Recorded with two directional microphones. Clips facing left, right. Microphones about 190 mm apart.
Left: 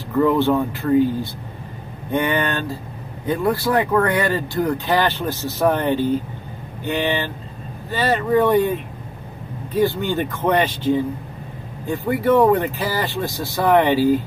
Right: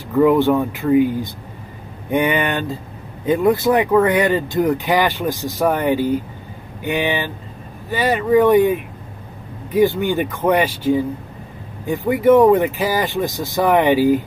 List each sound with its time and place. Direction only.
0.2 s speech: 15° right (ahead or behind)